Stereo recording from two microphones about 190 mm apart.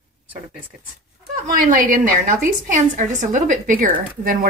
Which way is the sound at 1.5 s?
45° right (ahead or behind).